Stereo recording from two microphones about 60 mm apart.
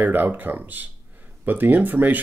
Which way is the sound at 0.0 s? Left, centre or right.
Right.